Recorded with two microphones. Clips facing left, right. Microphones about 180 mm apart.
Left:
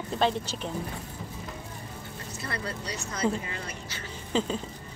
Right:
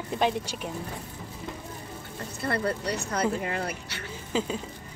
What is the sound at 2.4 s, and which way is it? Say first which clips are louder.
Speech: right 8 dB; 55° right (ahead or behind).